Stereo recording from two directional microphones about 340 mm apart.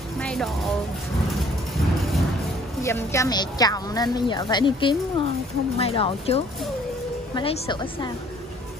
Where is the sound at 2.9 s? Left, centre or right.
Centre.